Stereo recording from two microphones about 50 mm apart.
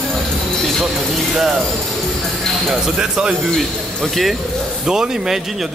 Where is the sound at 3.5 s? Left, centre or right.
Centre.